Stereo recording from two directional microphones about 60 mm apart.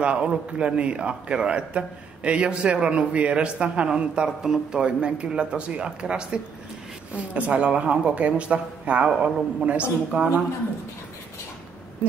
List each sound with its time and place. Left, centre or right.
0.0 s a man's voice: centre